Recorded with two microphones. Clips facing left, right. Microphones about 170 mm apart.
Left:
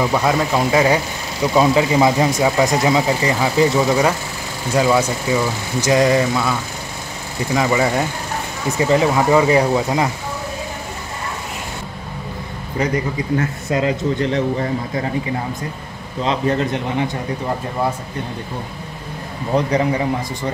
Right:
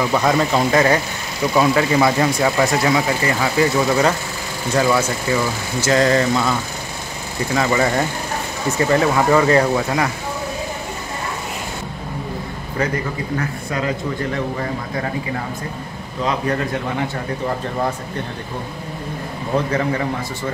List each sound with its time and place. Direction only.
0.0 s speech: 10° left (ahead or behind)
13.7 s speech: 25° left (ahead or behind)
16.3 s speech: 25° left (ahead or behind)
19.5 s speech: 15° left (ahead or behind)